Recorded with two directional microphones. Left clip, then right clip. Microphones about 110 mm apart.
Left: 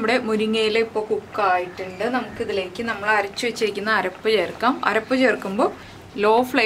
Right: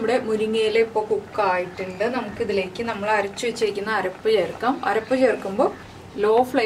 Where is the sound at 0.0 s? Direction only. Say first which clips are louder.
Left 1 dB; 30° left (ahead or behind).